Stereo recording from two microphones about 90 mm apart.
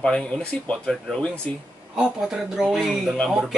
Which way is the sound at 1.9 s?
10° right (ahead or behind).